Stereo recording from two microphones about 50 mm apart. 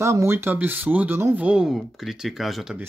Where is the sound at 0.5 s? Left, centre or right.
Right.